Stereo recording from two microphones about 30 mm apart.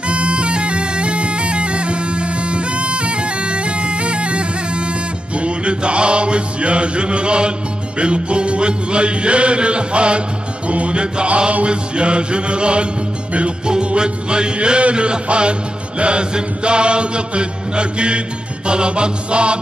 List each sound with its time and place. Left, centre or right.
0.1 s bagpipes: right
5.3 s music: right